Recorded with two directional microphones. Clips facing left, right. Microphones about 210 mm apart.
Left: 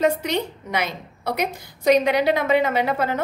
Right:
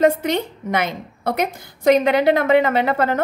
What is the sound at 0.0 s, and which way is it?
A woman's voice, 50° right (ahead or behind).